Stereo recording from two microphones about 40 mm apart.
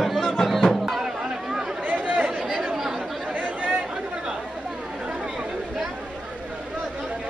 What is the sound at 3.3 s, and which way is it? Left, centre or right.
Chatter, right.